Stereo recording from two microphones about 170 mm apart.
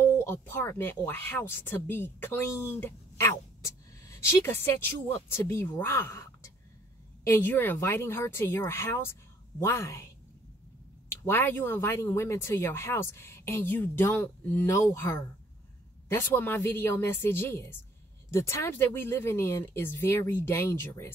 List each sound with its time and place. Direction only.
0.0 s speech: 15° left (ahead or behind)
11.1 s speech: 10° left (ahead or behind)